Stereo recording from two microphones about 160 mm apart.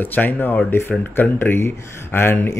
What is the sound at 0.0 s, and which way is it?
Speech, 10° left (ahead or behind).